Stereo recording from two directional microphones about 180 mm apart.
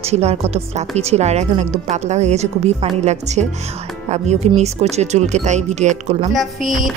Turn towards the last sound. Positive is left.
turn(degrees=0)  # may be behind; listen again after turning